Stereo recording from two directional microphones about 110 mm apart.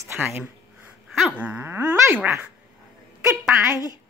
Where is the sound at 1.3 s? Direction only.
15° right (ahead or behind).